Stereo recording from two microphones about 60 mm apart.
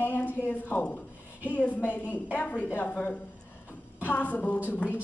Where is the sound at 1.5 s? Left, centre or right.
Left.